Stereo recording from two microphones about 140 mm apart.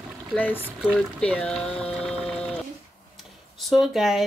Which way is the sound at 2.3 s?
5° left (ahead or behind).